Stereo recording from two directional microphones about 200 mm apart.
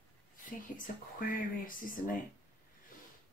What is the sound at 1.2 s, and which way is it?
Speech, 45° left (ahead or behind).